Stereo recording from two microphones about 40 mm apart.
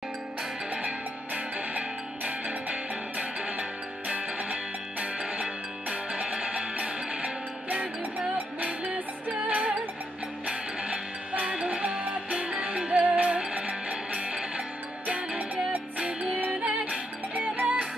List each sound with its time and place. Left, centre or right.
0.8 s music: right
5.2 s music: right
10.4 s music: right
12.0 s music: right
12.4 s music: right
13.0 s music: right
13.4 s music: right